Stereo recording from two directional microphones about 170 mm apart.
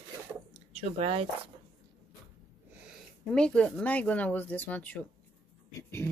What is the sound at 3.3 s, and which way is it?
Speech, 5° left (ahead or behind).